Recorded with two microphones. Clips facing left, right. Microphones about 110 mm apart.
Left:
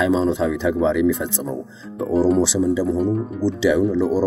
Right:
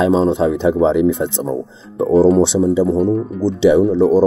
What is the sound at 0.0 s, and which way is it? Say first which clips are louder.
Speech: right 5 dB; 25° right (ahead or behind).